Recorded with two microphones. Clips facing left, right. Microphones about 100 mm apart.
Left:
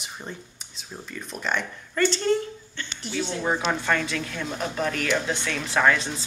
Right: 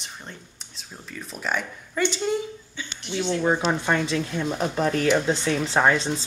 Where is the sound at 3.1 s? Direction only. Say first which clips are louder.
Right 3 dB; 20° right (ahead or behind).